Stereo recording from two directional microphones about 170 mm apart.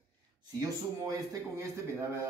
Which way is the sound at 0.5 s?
20° right (ahead or behind).